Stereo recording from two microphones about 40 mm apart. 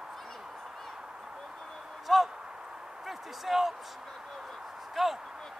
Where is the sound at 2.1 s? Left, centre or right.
Centre.